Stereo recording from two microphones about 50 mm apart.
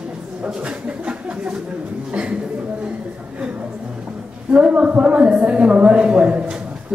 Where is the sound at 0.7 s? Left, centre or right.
Centre.